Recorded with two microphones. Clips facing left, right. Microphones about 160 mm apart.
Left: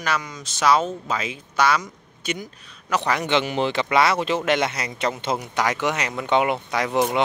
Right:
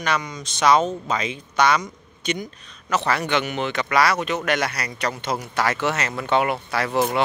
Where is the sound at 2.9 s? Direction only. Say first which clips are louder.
Even; 15° left (ahead or behind).